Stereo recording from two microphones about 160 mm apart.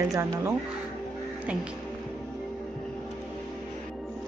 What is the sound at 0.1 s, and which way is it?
Speech, 20° right (ahead or behind).